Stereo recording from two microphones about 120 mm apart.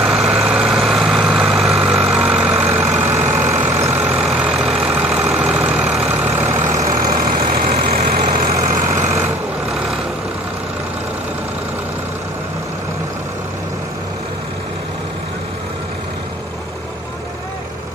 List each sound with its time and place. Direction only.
0.0 s vehicle: centre (ahead or behind); by 6.7 s 20° right (ahead or behind)
6.8 s vehicle: 30° right (ahead or behind)
7.7 s vehicle: 60° right (ahead or behind); by 9.1 s 90° right